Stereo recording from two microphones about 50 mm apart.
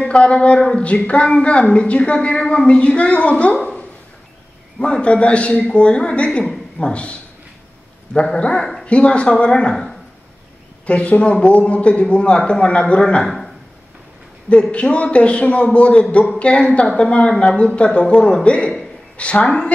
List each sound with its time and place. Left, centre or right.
0.1 s a man's voice: left
10.9 s a man's voice: left
14.5 s a man's voice: left